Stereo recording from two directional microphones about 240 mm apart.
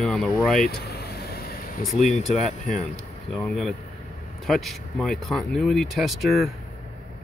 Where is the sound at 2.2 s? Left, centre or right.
Centre.